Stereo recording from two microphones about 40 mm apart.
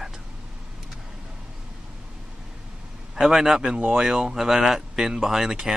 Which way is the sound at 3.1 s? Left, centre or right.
Centre.